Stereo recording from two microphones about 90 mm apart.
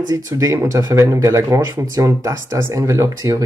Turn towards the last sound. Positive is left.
turn(degrees=-35)  # may be behind; listen again after turning